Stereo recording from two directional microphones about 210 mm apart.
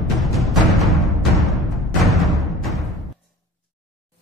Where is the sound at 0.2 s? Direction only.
Centre (ahead or behind).